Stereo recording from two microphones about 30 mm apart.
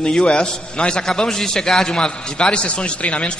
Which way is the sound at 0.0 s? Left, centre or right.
Left.